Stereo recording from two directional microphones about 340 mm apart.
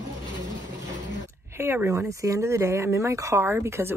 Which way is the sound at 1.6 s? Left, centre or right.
Centre.